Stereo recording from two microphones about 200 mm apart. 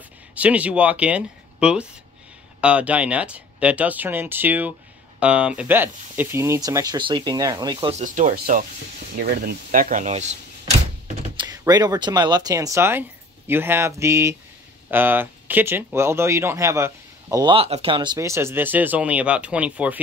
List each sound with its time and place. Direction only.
0.3 s speech: 5° right (ahead or behind)
7.9 s speech: 40° right (ahead or behind)
9.2 s speech: 50° right (ahead or behind); by 10.7 s 35° right (ahead or behind)
11.3 s speech: 20° right (ahead or behind)